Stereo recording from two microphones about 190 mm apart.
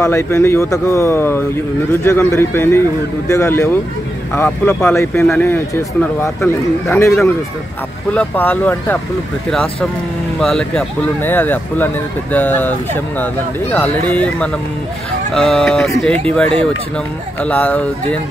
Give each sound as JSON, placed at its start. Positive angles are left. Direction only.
{"t": 0.0, "sound": "speech", "side_deg": 15}